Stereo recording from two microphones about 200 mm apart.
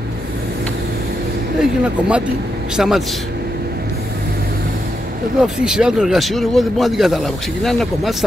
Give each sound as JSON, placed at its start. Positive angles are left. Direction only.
{"t": 1.6, "sound": "speech", "side_deg": -5}
{"t": 5.4, "sound": "speech", "side_deg": -5}